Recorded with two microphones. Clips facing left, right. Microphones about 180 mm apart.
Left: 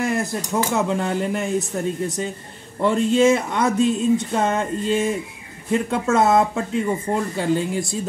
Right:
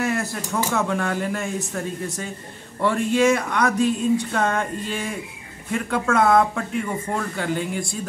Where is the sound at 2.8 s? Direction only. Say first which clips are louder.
Left 3 dB; 20° left (ahead or behind).